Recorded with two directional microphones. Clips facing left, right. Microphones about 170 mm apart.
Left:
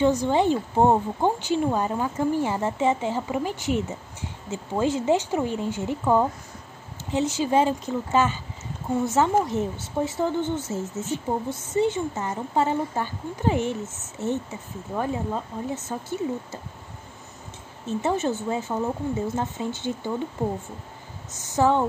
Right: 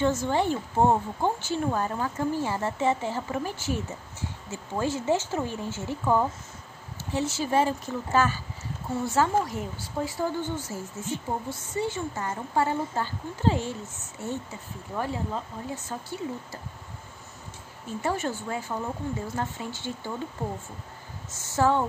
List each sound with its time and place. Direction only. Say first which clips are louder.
0.0 s a woman's voice: left 4 dB; 15° left (ahead or behind)
17.8 s a woman's voice: left 5 dB; 20° left (ahead or behind)
21.3 s speech: left 3 dB; 20° left (ahead or behind)